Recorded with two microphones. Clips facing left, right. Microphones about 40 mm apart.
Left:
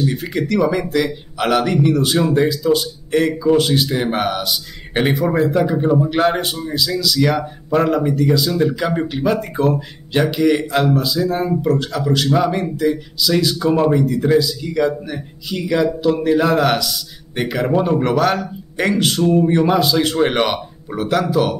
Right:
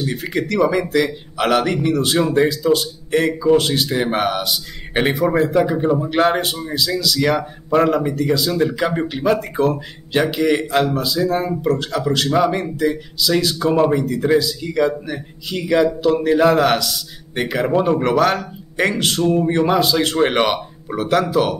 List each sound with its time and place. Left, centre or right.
0.0 s speech: centre